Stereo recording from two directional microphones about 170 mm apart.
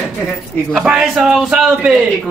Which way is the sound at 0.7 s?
5° right (ahead or behind).